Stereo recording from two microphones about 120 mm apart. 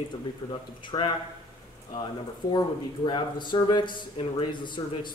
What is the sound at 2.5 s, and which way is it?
Speech, 40° left (ahead or behind).